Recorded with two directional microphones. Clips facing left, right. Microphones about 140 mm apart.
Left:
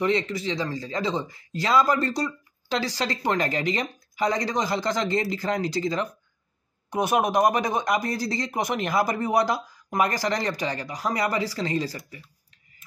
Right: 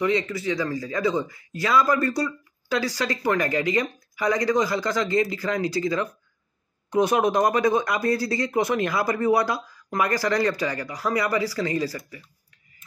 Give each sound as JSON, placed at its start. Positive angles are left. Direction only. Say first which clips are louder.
{"t": 0.0, "sound": "speech", "louder": "right 1 dB", "side_deg": 25}